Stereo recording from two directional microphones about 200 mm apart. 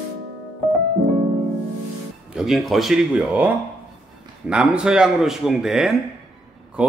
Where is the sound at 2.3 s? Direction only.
Centre (ahead or behind).